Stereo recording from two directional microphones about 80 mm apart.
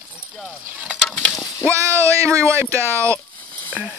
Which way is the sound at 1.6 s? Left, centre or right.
Right.